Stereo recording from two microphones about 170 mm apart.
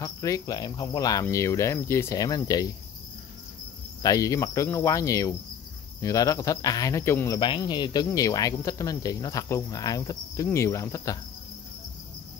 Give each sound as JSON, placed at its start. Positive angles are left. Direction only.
{"t": 0.0, "sound": "cricket", "side_deg": 20}
{"t": 4.0, "sound": "cricket", "side_deg": 20}